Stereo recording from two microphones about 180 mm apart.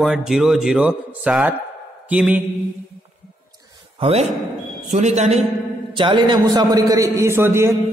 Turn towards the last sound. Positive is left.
turn(degrees=-15)  # may be behind; listen again after turning